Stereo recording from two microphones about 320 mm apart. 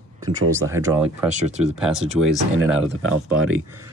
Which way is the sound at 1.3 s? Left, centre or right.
Right.